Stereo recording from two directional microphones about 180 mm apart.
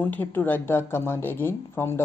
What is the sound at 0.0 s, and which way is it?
Speech, 10° left (ahead or behind).